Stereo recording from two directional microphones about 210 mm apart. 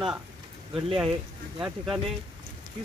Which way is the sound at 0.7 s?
Centre (ahead or behind).